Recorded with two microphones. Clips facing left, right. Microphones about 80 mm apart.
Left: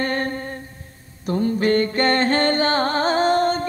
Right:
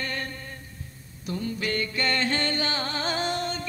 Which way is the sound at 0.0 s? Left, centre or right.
Left.